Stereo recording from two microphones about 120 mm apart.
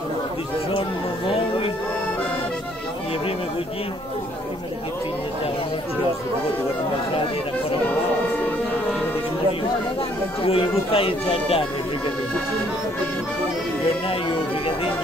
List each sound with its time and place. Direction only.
10.4 s speech: 50° left (ahead or behind)